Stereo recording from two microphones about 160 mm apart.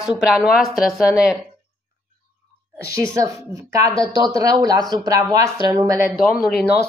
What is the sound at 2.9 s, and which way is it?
Speech, 20° right (ahead or behind).